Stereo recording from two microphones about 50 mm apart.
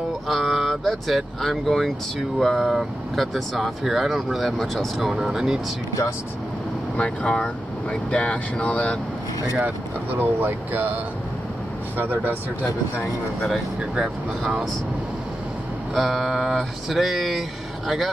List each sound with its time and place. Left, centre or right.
0.3 s a sound: centre
0.8 s speech: centre
7.0 s speech: centre
10.1 s speech: right
12.0 s speech: right
14.4 s speech: centre
15.9 s speech: centre